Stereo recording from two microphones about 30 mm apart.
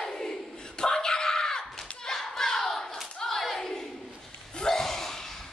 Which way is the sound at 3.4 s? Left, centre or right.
Centre.